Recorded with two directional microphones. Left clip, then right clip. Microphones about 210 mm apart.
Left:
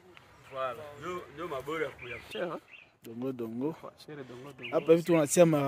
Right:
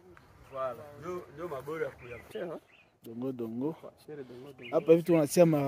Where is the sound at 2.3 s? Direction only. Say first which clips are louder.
Left 3 dB; 65° left (ahead or behind).